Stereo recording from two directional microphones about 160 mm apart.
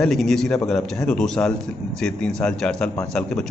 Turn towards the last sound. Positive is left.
turn(degrees=5)  # may be behind; listen again after turning